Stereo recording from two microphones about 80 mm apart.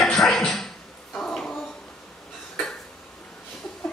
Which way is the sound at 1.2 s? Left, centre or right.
Centre.